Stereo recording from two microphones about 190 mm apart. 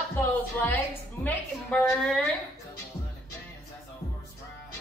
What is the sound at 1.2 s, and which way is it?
A woman's voice, 5° left (ahead or behind).